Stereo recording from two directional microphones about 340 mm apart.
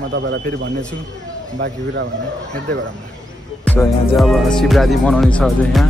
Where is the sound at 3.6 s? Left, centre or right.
Centre.